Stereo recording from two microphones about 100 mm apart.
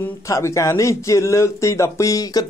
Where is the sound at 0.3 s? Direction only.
30° left (ahead or behind).